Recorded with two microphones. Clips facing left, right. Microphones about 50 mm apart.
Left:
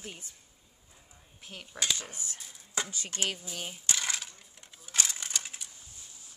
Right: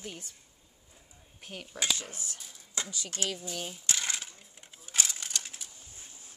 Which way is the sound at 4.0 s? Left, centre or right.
Centre.